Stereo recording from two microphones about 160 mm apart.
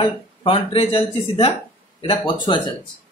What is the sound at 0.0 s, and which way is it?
Speech, 35° left (ahead or behind).